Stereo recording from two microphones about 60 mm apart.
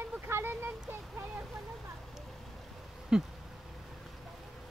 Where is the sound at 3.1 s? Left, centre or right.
Centre.